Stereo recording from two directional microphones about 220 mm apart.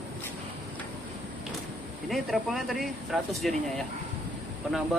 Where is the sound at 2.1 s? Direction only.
Centre (ahead or behind).